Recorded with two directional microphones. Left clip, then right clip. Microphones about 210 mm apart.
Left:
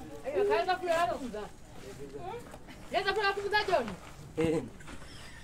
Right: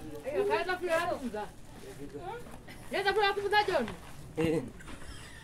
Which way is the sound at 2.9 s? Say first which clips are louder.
Right 1 dB; 55° right (ahead or behind).